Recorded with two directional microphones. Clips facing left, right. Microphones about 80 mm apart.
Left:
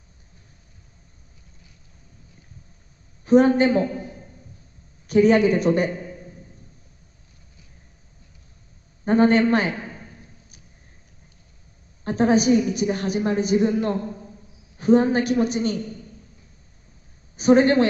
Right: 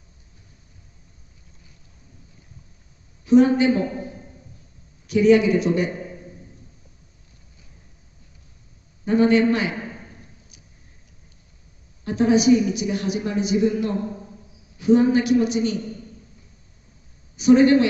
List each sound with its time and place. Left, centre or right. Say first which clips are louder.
3.3 s a woman's voice: even; left
5.0 s a woman's voice: even; left
9.0 s a woman's voice: even; left
12.0 s a woman's voice: even; left
17.4 s a woman's voice: right 2 dB; left